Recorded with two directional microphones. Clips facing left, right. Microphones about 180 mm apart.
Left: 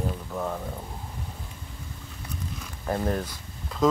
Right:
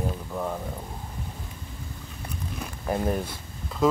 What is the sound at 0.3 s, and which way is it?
Boiling, 5° right (ahead or behind).